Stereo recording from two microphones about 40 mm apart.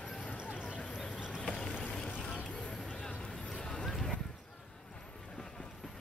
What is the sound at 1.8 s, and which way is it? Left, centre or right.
Vehicle, left.